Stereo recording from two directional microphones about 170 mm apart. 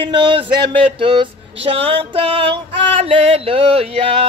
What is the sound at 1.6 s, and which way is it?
Music, 35° right (ahead or behind).